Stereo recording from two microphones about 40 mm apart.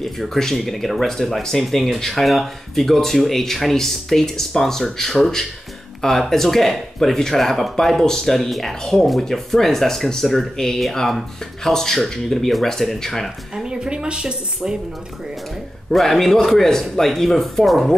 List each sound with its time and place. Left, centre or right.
0.0 s speech: centre
13.7 s a woman's voice: right
15.9 s speech: centre